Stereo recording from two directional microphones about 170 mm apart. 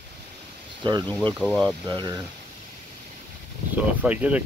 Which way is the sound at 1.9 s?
25° right (ahead or behind).